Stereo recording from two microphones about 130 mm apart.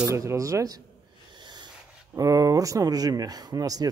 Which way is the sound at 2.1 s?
25° right (ahead or behind).